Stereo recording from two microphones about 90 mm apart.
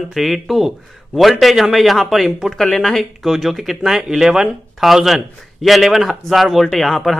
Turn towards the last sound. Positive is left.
turn(degrees=0)  # may be behind; listen again after turning